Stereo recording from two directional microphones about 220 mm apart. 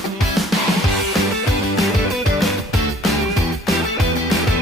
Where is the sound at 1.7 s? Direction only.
Centre (ahead or behind).